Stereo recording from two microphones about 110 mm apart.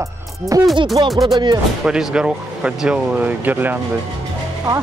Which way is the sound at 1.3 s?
35° right (ahead or behind).